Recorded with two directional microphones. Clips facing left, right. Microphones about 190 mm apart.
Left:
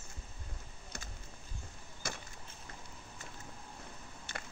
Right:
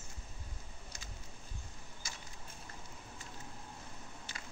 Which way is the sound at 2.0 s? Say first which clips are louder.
Left 10 dB; 60° left (ahead or behind).